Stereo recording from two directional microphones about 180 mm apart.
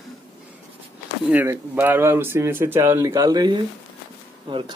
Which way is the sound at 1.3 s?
10° right (ahead or behind).